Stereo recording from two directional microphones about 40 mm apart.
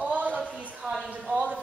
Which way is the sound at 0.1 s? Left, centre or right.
Right.